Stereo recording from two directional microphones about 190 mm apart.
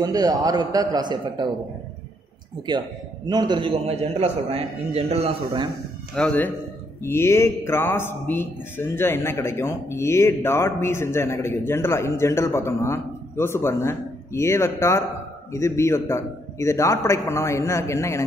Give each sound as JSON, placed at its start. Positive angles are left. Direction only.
{"t": 0.0, "sound": "a man's voice", "side_deg": -20}
{"t": 3.3, "sound": "a man's voice", "side_deg": -20}
{"t": 6.1, "sound": "a man's voice", "side_deg": 10}